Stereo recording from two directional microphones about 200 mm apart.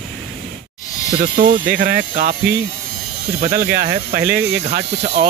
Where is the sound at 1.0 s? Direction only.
40° right (ahead or behind).